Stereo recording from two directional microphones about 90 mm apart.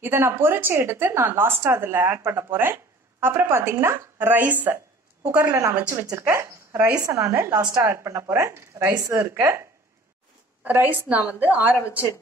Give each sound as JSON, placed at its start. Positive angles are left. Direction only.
{"t": 0.0, "sound": "a woman's voice", "side_deg": -25}
{"t": 6.1, "sound": "a woman's voice", "side_deg": -30}